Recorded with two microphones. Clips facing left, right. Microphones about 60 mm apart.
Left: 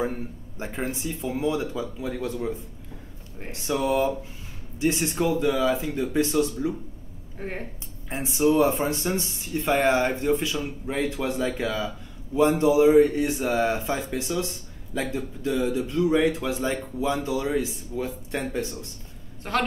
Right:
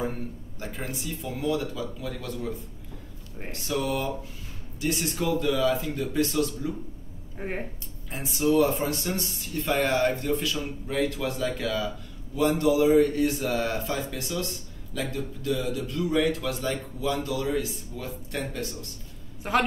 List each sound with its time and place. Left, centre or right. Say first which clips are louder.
0.0 s a man's voice: left 3 dB; left
3.6 s a man's voice: left 5 dB; left
7.3 s speech: right 1 dB; centre
8.1 s a man's voice: left 2 dB; left
19.4 s a woman's voice: right 2 dB; centre